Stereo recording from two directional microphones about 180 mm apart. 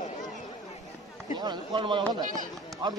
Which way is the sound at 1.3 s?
25° right (ahead or behind).